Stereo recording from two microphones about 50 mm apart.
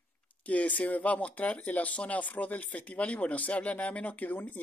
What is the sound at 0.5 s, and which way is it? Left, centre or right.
Speech, left.